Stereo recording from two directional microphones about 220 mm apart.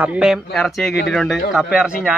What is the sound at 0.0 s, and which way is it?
A man's voice, 5° right (ahead or behind).